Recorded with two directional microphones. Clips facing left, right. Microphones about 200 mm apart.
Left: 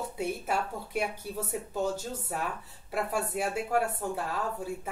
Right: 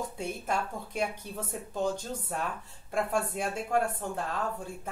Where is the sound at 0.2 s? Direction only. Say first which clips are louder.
Left 3 dB; 5° left (ahead or behind).